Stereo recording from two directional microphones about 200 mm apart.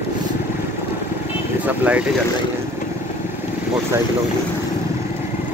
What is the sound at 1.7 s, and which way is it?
Speech, 5° right (ahead or behind).